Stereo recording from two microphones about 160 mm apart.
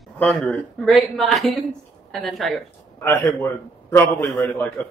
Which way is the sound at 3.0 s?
15° left (ahead or behind).